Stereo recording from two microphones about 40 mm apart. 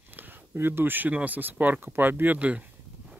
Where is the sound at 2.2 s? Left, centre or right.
Right.